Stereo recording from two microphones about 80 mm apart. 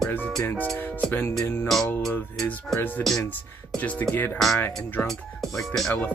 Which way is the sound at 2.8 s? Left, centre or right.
Left.